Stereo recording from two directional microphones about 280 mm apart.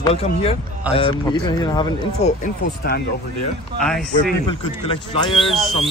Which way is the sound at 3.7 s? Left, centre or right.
Centre.